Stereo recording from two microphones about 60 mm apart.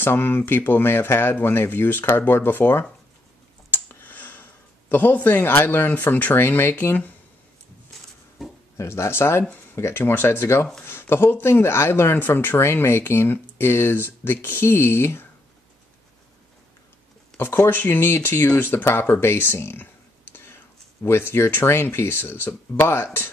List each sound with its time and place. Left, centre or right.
0.0 s speech: left
8.4 s a sound: centre
8.7 s speech: left
17.4 s speech: left
21.0 s speech: left